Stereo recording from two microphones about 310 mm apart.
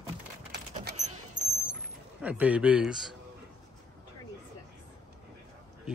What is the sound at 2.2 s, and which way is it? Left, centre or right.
Speech, centre.